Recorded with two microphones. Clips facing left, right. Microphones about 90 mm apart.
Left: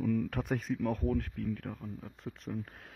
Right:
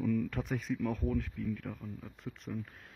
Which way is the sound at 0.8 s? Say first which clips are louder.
Left 2 dB; 40° left (ahead or behind).